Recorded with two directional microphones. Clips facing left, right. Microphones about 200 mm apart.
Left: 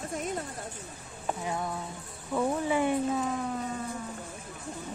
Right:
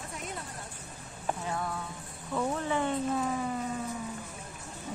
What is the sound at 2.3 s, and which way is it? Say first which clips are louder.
Speech: left 3 dB; 10° left (ahead or behind).